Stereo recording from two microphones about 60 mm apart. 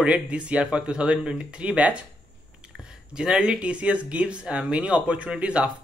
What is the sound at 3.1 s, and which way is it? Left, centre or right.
Speech, centre.